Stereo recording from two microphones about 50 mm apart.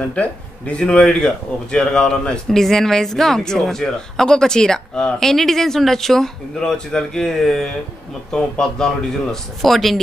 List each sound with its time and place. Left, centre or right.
0.1 s speech: left; by 9.9 s centre